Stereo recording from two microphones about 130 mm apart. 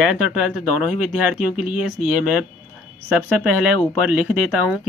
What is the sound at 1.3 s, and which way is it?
Speech, 10° right (ahead or behind).